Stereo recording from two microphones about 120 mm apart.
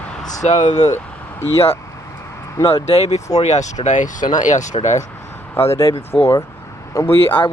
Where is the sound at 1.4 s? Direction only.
55° left (ahead or behind); by 4.6 s 90° left.